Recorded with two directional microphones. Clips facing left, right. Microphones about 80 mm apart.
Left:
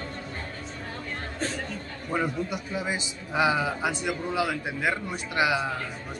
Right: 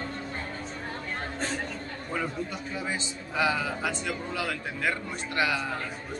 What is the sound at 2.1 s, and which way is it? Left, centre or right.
A man's voice, centre.